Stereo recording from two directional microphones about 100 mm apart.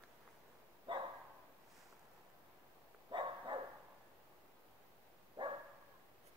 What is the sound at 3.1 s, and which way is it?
Dog, 50° right (ahead or behind).